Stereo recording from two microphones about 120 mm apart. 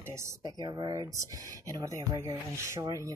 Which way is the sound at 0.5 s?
40° right (ahead or behind).